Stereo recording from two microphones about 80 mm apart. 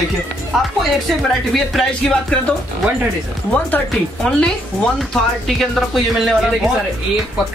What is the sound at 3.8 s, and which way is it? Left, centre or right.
Speech, centre.